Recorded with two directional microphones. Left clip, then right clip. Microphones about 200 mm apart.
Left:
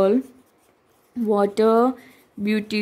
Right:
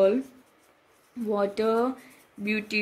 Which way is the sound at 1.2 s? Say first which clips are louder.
Left 7 dB; 60° left (ahead or behind).